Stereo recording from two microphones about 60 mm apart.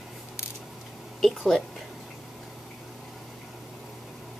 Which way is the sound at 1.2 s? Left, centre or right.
Centre.